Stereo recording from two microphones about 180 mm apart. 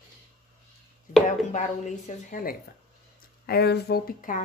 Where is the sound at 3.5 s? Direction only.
60° left (ahead or behind).